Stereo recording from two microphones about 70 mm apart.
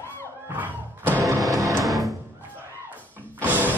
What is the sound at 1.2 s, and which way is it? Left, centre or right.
Music, right.